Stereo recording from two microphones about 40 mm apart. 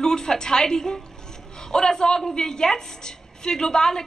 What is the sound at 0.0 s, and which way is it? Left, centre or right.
A woman's voice, centre.